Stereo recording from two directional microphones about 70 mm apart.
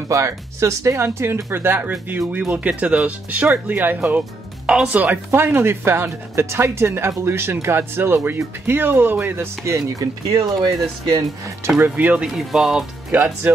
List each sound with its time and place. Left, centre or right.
0.1 s speech: right
5.3 s speech: right
9.7 s speech: right
12.2 s speech: centre
13.1 s speech: right